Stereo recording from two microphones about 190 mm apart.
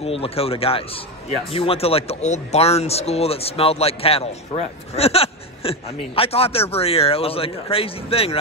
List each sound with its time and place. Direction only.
0.0 s speech: 30° left (ahead or behind)